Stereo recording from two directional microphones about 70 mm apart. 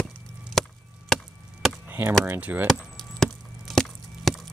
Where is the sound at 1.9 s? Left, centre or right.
Right.